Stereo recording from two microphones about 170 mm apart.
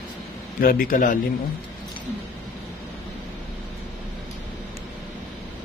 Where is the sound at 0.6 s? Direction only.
55° left (ahead or behind).